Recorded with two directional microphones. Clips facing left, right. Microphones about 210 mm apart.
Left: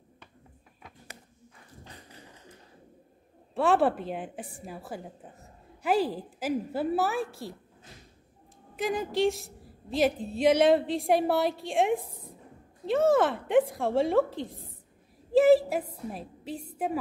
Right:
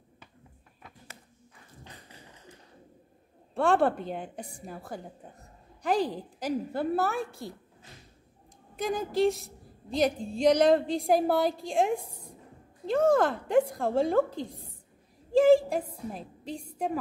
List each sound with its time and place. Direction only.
3.5 s a woman's voice: 5° left (ahead or behind)
8.7 s a woman's voice: centre (ahead or behind)
15.3 s a sound: 5° left (ahead or behind)
16.1 s a woman's voice: 5° left (ahead or behind)